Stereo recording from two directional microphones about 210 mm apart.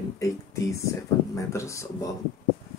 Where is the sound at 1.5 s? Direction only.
15° left (ahead or behind).